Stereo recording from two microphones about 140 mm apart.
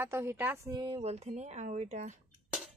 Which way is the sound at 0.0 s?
20° right (ahead or behind).